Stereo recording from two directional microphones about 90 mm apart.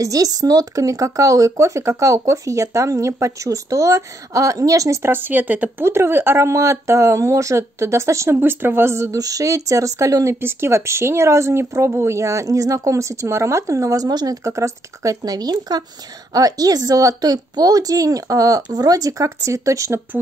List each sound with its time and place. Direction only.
0.0 s a woman's voice: 40° right (ahead or behind)